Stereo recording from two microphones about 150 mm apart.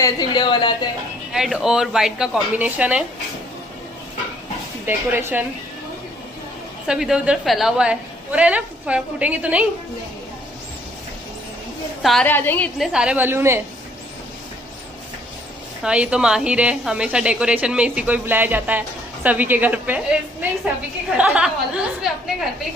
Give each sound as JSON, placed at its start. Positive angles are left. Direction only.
{"t": 0.0, "sound": "speech", "side_deg": 30}
{"t": 1.3, "sound": "a woman's voice", "side_deg": -5}
{"t": 4.8, "sound": "a woman's voice", "side_deg": -15}
{"t": 6.9, "sound": "a woman's voice", "side_deg": -5}
{"t": 12.0, "sound": "a woman's voice", "side_deg": 0}
{"t": 12.3, "sound": "a woman's voice", "side_deg": 10}
{"t": 12.7, "sound": "a woman's voice", "side_deg": -5}
{"t": 15.8, "sound": "a woman's voice", "side_deg": -5}
{"t": 21.2, "sound": "a woman's voice", "side_deg": -5}